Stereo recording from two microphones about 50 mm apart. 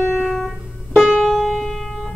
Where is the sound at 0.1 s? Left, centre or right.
Centre.